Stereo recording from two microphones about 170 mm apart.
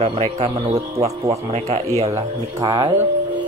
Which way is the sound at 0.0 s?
40° right (ahead or behind).